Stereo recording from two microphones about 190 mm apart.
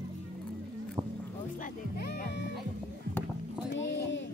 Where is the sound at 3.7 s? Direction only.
70° left (ahead or behind).